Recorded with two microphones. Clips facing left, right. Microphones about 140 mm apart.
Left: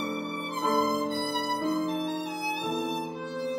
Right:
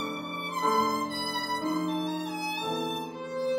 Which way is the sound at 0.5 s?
Centre (ahead or behind).